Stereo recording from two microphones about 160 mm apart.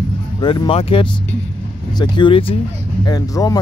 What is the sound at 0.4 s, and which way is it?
Speech, 30° left (ahead or behind).